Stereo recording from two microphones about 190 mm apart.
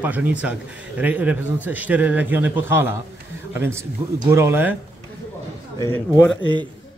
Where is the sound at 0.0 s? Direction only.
10° right (ahead or behind).